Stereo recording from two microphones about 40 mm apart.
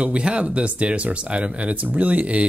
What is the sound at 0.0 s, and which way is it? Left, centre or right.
Speech, right.